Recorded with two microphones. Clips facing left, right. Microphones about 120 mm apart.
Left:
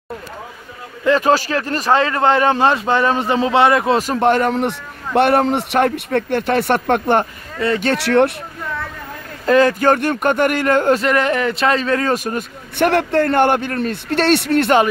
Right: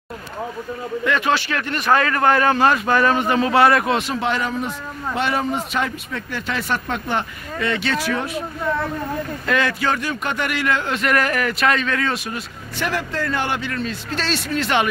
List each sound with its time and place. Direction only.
1.0 s speech: 35° left (ahead or behind)
3.9 s a man's voice: 45° left (ahead or behind)
7.6 s speech: 40° left (ahead or behind)
7.9 s speech: 70° left (ahead or behind)
9.5 s speech: 40° left (ahead or behind)
11.0 s speech: 25° left (ahead or behind); by 12.4 s 45° left (ahead or behind)
12.7 s a man's voice: 60° left (ahead or behind)